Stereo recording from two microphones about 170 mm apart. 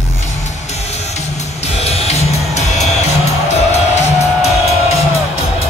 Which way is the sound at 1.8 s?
35° left (ahead or behind).